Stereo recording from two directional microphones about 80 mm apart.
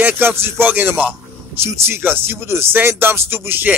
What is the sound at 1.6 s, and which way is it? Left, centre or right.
A man's voice, right.